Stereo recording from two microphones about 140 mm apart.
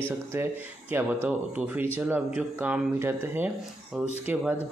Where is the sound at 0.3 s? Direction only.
15° right (ahead or behind).